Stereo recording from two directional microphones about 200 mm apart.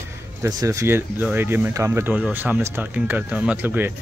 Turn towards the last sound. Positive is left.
turn(degrees=-10)  # may be behind; listen again after turning